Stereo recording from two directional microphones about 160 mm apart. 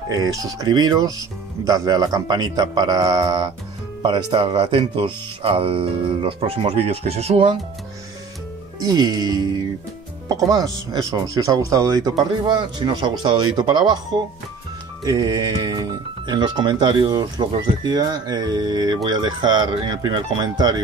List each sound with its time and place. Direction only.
0.1 s speech: 25° right (ahead or behind)
4.3 s speech: 35° right (ahead or behind)
8.9 s speech: 25° right (ahead or behind)
15.0 s speech: 20° right (ahead or behind)